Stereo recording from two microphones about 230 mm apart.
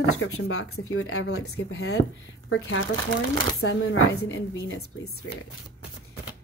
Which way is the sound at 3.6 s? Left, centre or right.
Left.